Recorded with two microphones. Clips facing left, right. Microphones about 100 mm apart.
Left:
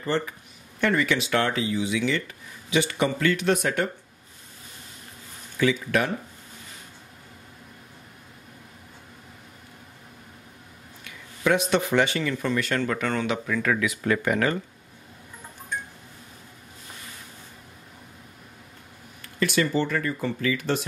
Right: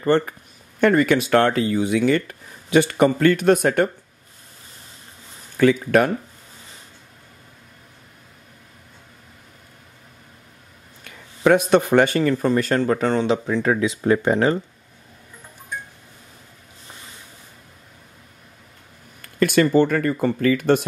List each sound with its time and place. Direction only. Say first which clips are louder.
0.0 s speech: right 8 dB; 55° right (ahead or behind)
5.6 s speech: right 7 dB; 50° right (ahead or behind)
11.1 s speech: right 7 dB; 50° right (ahead or behind); by 14.6 s 30° right (ahead or behind)
19.4 s speech: right 8 dB; 50° right (ahead or behind)